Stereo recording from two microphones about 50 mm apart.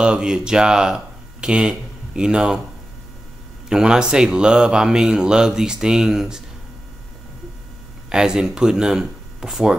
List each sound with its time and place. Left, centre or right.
0.0 s speech: centre
3.6 s speech: centre
8.1 s speech: centre